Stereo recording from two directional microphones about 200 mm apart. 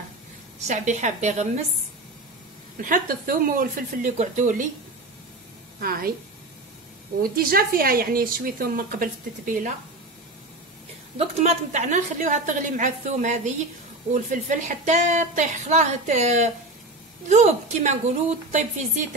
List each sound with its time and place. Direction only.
0.7 s a woman's voice: 35° right (ahead or behind)
2.8 s a woman's voice: 45° right (ahead or behind)
5.8 s a woman's voice: 45° right (ahead or behind)
7.2 s a woman's voice: 45° right (ahead or behind)
11.1 s a woman's voice: 35° right (ahead or behind)